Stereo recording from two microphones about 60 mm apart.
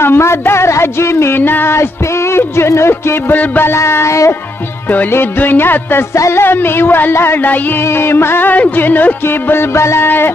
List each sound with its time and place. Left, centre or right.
0.0 s speech: left
1.3 s music: left
2.3 s speech: left
3.3 s music: left
3.7 s speech: left
5.1 s music: left
6.1 s music: left
6.4 s music: left
9.6 s speech: left
10.0 s music: left